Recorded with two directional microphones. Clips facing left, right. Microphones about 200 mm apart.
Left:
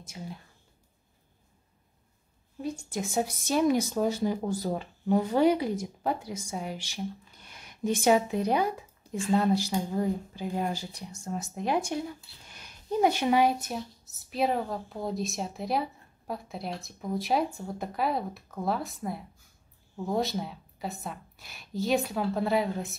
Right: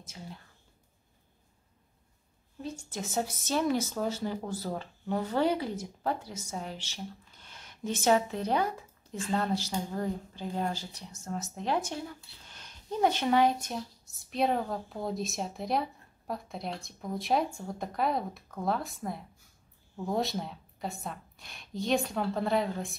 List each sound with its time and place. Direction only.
0.2 s speech: 20° left (ahead or behind)
2.6 s a woman's voice: 10° left (ahead or behind)